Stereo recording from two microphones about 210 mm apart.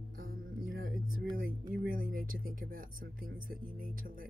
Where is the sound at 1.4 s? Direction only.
40° right (ahead or behind).